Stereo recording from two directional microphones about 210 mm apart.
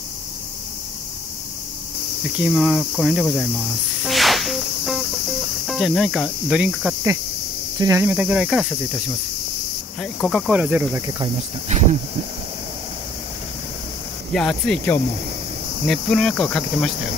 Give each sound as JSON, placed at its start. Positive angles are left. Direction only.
{"t": 2.3, "sound": "cricket", "side_deg": -5}
{"t": 4.0, "sound": "music", "side_deg": 0}
{"t": 5.7, "sound": "cricket", "side_deg": 0}
{"t": 10.2, "sound": "cricket", "side_deg": 0}
{"t": 11.7, "sound": "speech", "side_deg": -35}
{"t": 14.3, "sound": "cricket", "side_deg": 0}